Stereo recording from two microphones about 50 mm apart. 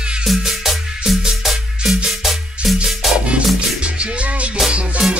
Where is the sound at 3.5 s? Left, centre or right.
Right.